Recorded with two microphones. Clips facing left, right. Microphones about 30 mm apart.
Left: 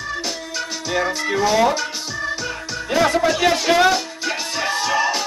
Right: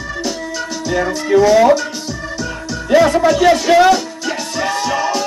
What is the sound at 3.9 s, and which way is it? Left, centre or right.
Music, centre.